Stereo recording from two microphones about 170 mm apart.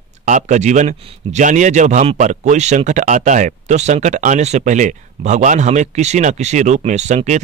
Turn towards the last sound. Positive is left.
turn(degrees=-45)  # may be behind; listen again after turning